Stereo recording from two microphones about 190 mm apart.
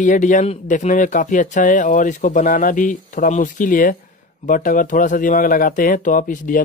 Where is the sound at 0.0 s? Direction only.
40° left (ahead or behind).